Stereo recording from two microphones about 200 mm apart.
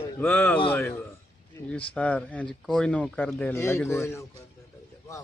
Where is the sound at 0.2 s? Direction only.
10° left (ahead or behind).